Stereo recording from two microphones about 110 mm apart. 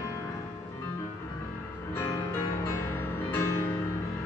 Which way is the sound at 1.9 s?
25° left (ahead or behind).